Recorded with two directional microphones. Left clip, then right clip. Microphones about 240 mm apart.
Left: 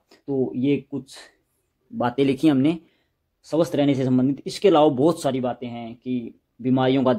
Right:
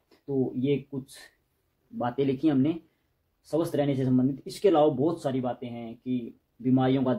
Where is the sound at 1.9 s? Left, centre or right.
Left.